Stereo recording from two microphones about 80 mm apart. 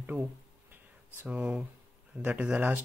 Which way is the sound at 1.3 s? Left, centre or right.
Centre.